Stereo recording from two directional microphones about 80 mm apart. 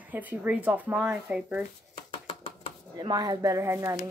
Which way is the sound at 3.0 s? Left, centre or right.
Right.